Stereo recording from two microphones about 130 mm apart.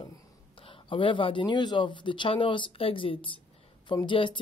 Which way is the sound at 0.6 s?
45° left (ahead or behind).